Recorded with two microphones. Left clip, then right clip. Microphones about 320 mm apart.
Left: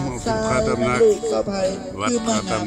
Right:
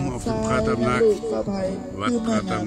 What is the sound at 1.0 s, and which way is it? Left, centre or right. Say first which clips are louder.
Speech: left 3 dB; left.